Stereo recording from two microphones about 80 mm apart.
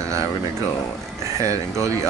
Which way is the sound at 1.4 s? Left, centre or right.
Right.